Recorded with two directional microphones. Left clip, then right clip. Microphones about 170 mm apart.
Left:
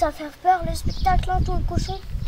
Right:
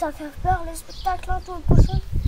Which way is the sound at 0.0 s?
35° left (ahead or behind).